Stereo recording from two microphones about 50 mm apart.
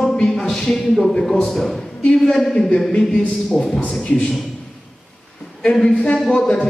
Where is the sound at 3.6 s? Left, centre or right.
Centre.